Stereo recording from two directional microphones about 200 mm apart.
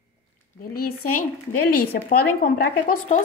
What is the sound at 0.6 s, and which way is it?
Speech, 50° left (ahead or behind).